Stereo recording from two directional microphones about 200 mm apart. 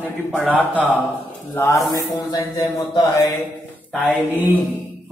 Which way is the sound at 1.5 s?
10° left (ahead or behind).